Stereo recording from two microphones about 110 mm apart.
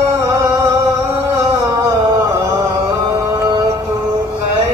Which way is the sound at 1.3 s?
30° right (ahead or behind).